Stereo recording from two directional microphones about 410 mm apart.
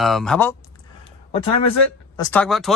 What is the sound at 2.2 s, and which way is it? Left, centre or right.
Speech, centre.